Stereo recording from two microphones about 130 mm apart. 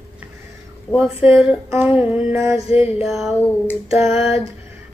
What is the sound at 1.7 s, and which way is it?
Female singing, 15° right (ahead or behind).